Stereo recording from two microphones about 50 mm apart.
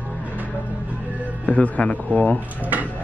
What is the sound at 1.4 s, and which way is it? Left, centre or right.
Speech, left.